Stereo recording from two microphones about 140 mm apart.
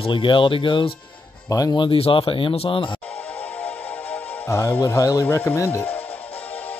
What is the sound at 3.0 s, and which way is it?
Music, 10° left (ahead or behind).